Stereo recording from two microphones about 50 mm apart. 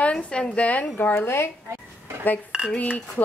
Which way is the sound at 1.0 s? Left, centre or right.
Left.